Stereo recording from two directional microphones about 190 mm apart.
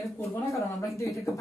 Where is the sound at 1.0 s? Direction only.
Centre (ahead or behind).